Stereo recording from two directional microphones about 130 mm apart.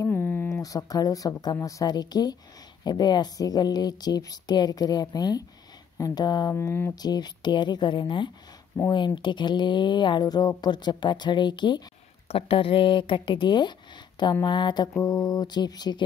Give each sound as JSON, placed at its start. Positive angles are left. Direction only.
{"t": 0.0, "sound": "a sound", "side_deg": 15}
{"t": 0.6, "sound": "a woman's voice", "side_deg": 30}
{"t": 6.5, "sound": "speech", "side_deg": 20}
{"t": 7.0, "sound": "speech", "side_deg": 30}
{"t": 12.3, "sound": "speech", "side_deg": 45}